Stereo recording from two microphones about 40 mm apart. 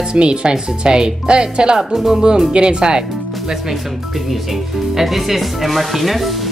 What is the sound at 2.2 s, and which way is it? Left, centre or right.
Speech, centre.